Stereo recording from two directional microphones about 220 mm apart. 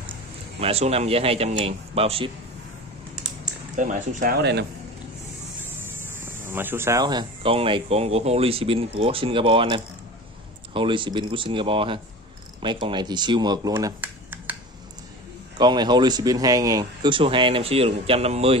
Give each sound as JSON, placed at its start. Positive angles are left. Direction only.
{"t": 0.6, "sound": "speech", "side_deg": -25}
{"t": 3.7, "sound": "speech", "side_deg": -35}
{"t": 6.4, "sound": "speech", "side_deg": -10}
{"t": 15.5, "sound": "speech", "side_deg": -20}